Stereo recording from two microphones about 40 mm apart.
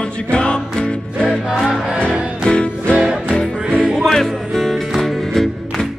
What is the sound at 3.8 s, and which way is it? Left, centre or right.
Music, right.